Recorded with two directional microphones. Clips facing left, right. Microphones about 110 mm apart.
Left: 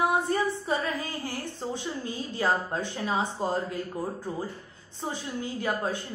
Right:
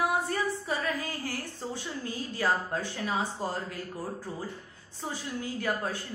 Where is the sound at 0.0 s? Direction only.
25° left (ahead or behind).